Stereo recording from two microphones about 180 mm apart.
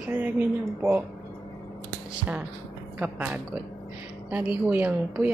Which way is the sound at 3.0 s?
10° right (ahead or behind).